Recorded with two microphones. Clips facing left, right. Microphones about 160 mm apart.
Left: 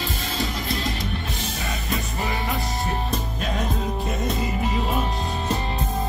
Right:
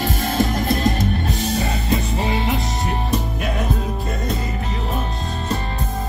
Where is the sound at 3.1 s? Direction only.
65° right (ahead or behind).